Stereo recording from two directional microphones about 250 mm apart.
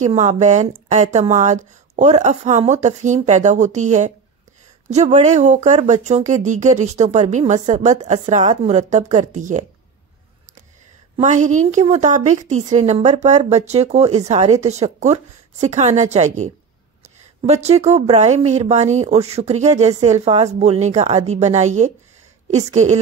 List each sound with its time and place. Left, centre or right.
0.0 s speech: right
11.1 s speech: right